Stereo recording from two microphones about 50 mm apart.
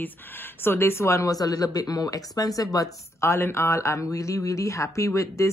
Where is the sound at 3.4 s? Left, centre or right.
Left.